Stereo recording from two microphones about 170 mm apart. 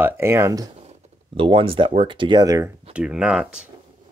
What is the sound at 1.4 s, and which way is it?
Speech, 30° right (ahead or behind).